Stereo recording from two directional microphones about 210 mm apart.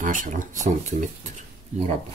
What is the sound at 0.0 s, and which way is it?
Speech, 40° right (ahead or behind).